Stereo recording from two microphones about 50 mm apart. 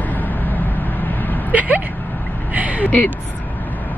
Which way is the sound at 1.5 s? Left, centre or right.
Right.